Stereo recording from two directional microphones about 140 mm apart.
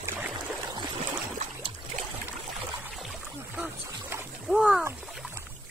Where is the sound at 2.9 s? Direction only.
5° right (ahead or behind).